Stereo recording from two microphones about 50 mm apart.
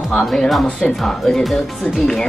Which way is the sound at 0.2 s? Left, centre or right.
Centre.